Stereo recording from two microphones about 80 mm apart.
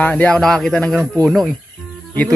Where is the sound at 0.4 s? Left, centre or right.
Centre.